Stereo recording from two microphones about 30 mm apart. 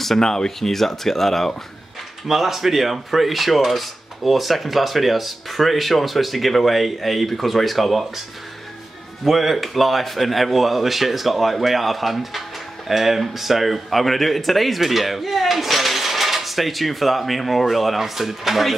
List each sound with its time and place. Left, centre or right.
0.2 s speech: left
0.6 s speech: centre
2.2 s speech: centre
9.2 s speech: centre